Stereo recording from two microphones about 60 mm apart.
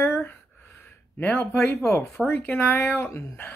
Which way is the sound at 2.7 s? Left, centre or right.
Left.